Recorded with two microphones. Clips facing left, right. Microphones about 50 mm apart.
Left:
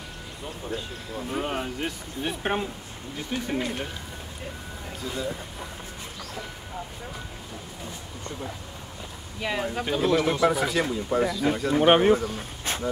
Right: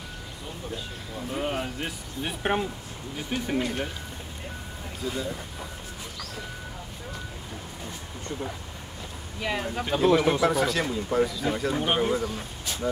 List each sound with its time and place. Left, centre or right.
1.5 s speech: centre
3.3 s speech: centre
3.5 s speech: centre
5.0 s speech: centre
9.4 s speech: centre
11.8 s speech: left